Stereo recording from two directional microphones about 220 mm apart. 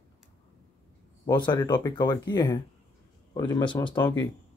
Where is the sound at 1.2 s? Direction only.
20° left (ahead or behind).